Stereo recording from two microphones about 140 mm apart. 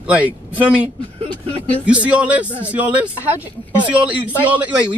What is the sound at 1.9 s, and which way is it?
A man's voice, 10° right (ahead or behind).